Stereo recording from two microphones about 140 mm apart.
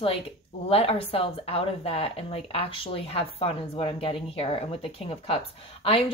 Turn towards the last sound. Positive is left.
turn(degrees=45)  # may be behind; listen again after turning